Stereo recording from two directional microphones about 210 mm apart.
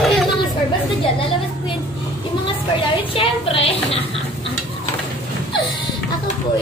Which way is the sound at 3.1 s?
25° left (ahead or behind).